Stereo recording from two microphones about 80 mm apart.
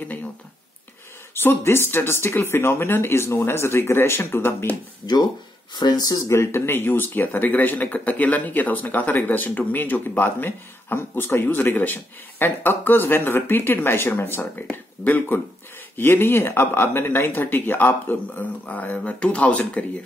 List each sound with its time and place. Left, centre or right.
1.3 s speech: left
5.0 s speech: left
6.2 s speech: left